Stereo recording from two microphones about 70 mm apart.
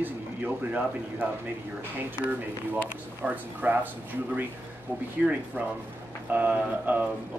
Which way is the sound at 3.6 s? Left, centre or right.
Right.